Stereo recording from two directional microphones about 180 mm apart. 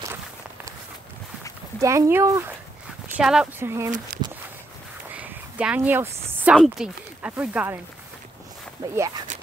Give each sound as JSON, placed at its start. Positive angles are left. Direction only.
{"t": 1.8, "sound": "speech", "side_deg": -15}
{"t": 5.1, "sound": "speech", "side_deg": -5}
{"t": 8.9, "sound": "speech", "side_deg": -20}